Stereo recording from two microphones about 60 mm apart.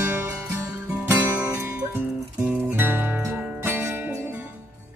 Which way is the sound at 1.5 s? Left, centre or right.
Right.